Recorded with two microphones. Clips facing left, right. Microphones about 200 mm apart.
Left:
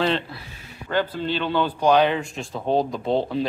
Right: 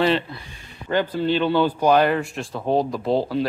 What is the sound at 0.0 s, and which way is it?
Speech, centre (ahead or behind).